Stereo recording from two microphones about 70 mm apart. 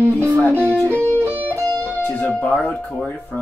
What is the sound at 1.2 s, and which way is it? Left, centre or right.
Music, right.